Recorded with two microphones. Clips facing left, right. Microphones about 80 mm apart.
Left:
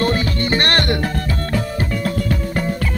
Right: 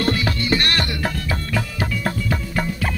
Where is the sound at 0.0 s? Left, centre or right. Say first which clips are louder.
Left 3 dB; left.